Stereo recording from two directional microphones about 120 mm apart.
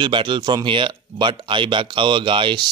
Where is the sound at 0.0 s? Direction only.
40° right (ahead or behind).